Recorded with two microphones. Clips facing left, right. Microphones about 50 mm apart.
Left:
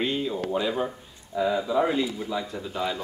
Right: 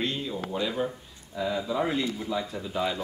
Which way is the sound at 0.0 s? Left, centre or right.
Centre.